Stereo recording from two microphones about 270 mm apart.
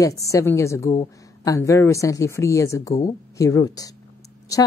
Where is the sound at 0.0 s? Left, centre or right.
Centre.